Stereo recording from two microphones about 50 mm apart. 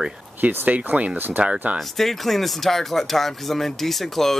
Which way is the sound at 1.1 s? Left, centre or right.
Right.